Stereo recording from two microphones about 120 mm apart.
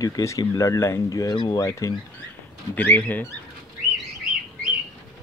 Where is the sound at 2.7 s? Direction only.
15° left (ahead or behind).